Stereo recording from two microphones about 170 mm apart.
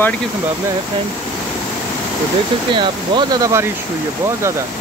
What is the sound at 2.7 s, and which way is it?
Speech, 30° right (ahead or behind).